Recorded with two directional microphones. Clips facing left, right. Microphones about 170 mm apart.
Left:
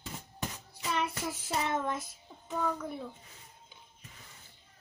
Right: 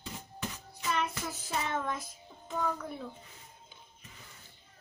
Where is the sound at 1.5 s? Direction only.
10° left (ahead or behind).